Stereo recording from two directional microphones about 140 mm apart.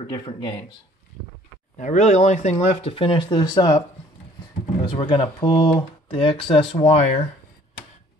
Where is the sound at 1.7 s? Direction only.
60° left (ahead or behind).